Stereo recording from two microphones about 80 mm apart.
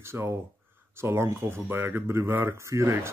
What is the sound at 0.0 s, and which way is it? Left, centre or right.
Speech, right.